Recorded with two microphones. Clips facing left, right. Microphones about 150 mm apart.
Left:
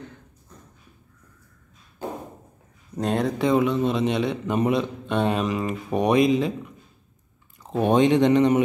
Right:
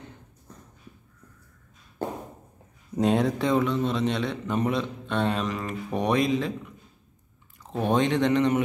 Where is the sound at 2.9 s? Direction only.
Centre (ahead or behind); by 6.5 s 15° left (ahead or behind).